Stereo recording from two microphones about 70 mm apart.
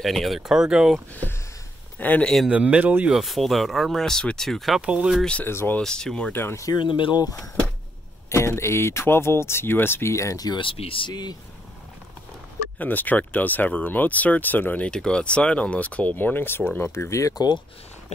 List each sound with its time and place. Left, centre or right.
0.0 s speech: centre
2.0 s speech: left
2.5 s speech: centre
3.2 s speech: centre
4.8 s speech: centre
5.4 s speech: left
5.8 s speech: centre
6.3 s speech: left
6.7 s speech: left
8.3 s speech: left
11.1 s speech: left
12.7 s speech: left
14.9 s speech: centre; by 17.4 s left